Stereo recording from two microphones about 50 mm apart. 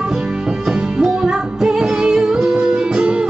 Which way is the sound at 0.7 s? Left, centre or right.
Centre.